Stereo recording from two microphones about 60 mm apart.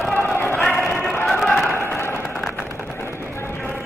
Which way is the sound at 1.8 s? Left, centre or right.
Left.